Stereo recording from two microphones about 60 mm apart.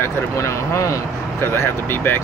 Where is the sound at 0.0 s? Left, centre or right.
Left.